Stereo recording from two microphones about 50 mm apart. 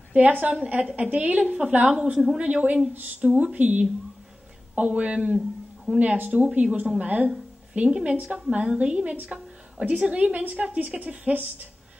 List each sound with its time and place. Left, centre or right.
0.1 s a woman's voice: right
2.9 s a woman's voice: right